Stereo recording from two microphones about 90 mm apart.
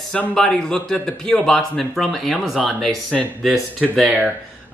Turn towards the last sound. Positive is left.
turn(degrees=5)  # may be behind; listen again after turning